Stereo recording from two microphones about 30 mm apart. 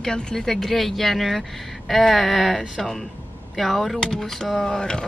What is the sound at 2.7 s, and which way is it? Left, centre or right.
Speech, centre.